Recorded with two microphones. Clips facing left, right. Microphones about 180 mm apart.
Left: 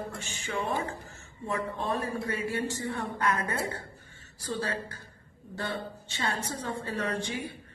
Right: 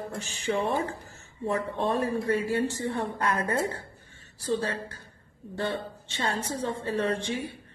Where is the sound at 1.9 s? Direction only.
30° right (ahead or behind).